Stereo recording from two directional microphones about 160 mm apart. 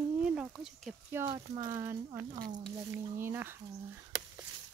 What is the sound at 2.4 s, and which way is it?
Speech, 65° right (ahead or behind).